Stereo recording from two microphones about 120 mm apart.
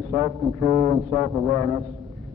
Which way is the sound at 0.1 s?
10° right (ahead or behind).